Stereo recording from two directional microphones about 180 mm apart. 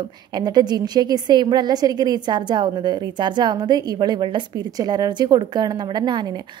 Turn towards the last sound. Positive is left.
turn(degrees=-25)  # may be behind; listen again after turning